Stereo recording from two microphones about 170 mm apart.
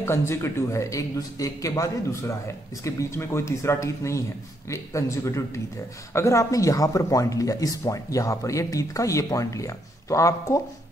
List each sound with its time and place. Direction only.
0.0 s speech: 15° left (ahead or behind)